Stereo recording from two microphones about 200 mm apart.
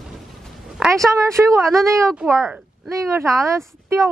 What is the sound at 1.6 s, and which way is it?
Speech, centre (ahead or behind).